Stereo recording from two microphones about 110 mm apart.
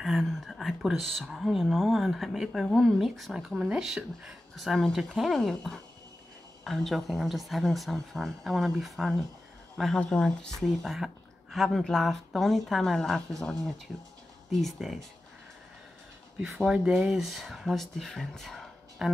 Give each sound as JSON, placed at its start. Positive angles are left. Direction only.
{"t": 0.0, "sound": "speech", "side_deg": 0}
{"t": 16.3, "sound": "speech", "side_deg": 0}